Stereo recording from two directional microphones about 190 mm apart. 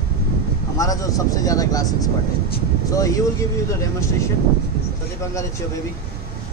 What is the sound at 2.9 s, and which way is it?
Speech, 20° left (ahead or behind).